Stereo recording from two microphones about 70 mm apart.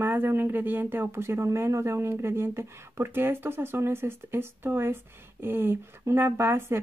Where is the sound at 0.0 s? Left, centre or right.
Right.